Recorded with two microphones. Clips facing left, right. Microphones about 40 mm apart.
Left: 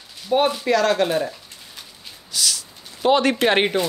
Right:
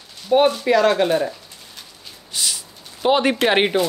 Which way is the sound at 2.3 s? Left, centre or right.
Right.